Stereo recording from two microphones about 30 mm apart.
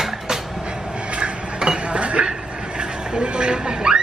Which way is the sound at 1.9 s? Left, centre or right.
Right.